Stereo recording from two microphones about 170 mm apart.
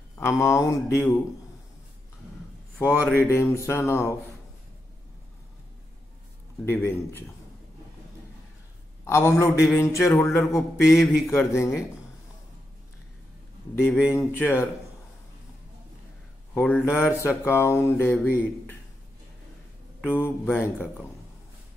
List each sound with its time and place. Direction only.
0.2 s speech: 15° left (ahead or behind)
2.8 s speech: 15° left (ahead or behind)
6.6 s speech: 15° left (ahead or behind)
9.0 s speech: 15° left (ahead or behind)
14.0 s speech: 15° left (ahead or behind)
16.5 s speech: 10° left (ahead or behind)
20.0 s speech: 15° left (ahead or behind)